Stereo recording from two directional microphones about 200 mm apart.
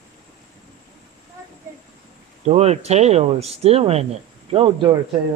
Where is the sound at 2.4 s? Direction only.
30° right (ahead or behind).